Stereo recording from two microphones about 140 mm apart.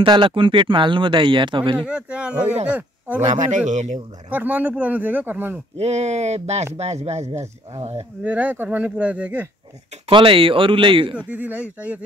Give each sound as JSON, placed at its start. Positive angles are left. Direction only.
{"t": 0.0, "sound": "speech", "side_deg": -35}
{"t": 1.9, "sound": "speech", "side_deg": -10}
{"t": 3.2, "sound": "a man's voice", "side_deg": -55}
{"t": 4.3, "sound": "speech", "side_deg": -10}
{"t": 5.8, "sound": "speech", "side_deg": -55}
{"t": 8.2, "sound": "speech", "side_deg": -10}
{"t": 10.0, "sound": "speech", "side_deg": -40}
{"t": 11.1, "sound": "speech", "side_deg": -10}